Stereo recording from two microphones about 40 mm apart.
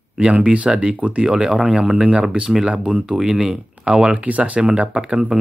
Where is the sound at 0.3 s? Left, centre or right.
Right.